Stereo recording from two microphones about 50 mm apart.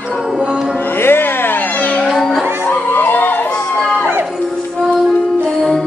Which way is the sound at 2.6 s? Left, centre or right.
Left.